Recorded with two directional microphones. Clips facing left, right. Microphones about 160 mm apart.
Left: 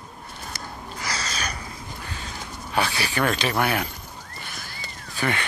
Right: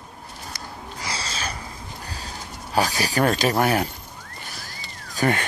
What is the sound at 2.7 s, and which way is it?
Speech, 40° right (ahead or behind).